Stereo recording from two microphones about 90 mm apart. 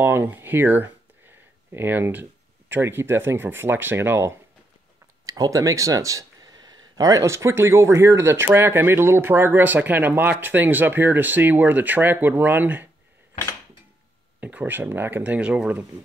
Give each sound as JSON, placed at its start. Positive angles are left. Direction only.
{"t": 0.0, "sound": "a sound", "side_deg": -25}
{"t": 2.7, "sound": "speech", "side_deg": -25}
{"t": 5.2, "sound": "speech", "side_deg": -45}
{"t": 14.4, "sound": "speech", "side_deg": -20}